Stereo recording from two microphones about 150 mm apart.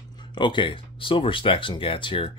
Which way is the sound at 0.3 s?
30° left (ahead or behind).